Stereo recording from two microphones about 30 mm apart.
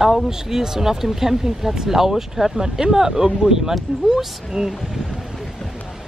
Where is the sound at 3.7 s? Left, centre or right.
Centre.